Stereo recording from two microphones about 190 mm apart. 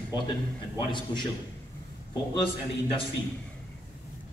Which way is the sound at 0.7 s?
25° left (ahead or behind).